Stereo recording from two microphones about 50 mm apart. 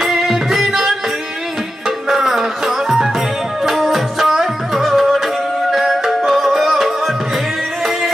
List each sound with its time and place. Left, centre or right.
0.0 s music: centre